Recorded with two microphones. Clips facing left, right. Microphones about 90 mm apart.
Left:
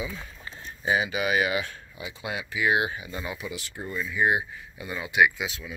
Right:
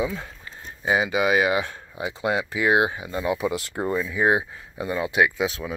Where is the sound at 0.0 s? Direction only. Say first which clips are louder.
Right 8 dB; 70° right (ahead or behind).